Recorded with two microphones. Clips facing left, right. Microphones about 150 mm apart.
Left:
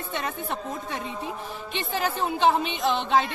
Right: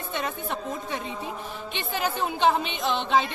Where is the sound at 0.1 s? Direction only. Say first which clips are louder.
Right 1 dB; centre (ahead or behind).